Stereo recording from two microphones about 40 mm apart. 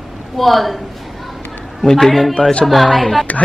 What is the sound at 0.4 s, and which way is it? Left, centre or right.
Speech, centre.